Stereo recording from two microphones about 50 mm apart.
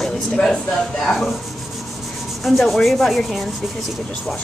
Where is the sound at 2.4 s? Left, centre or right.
Centre.